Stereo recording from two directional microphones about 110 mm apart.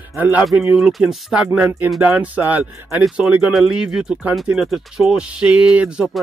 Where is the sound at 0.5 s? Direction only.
5° right (ahead or behind).